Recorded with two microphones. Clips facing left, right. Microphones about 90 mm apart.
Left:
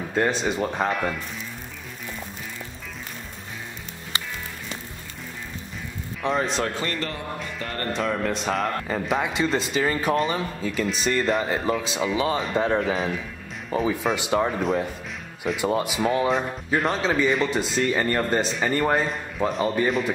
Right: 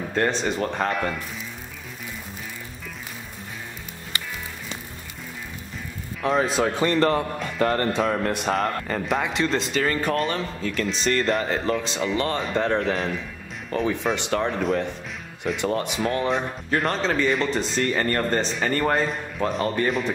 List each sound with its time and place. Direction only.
0.1 s speech: 5° left (ahead or behind)
6.2 s speech: centre (ahead or behind)
6.9 s speech: 45° right (ahead or behind)
8.5 s speech: centre (ahead or behind)